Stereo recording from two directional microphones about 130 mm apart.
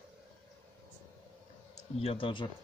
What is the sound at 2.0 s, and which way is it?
Speech, 45° left (ahead or behind).